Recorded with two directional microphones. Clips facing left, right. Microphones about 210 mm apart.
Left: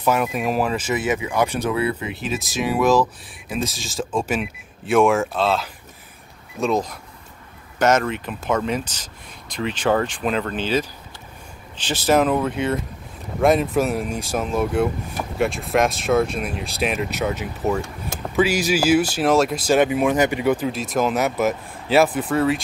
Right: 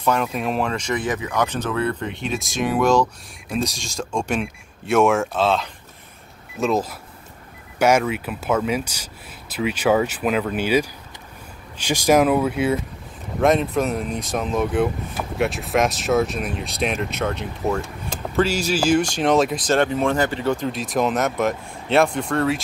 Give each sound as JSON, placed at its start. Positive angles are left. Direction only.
{"t": 0.0, "sound": "speech", "side_deg": 5}